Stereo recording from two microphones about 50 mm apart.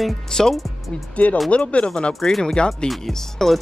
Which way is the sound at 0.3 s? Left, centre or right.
Centre.